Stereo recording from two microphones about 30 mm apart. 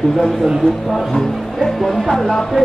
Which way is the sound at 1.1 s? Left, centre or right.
Centre.